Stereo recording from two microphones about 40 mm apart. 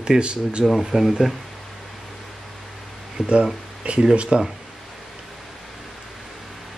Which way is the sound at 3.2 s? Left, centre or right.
Right.